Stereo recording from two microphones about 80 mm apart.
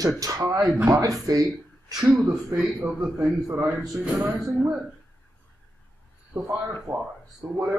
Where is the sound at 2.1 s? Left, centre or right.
Right.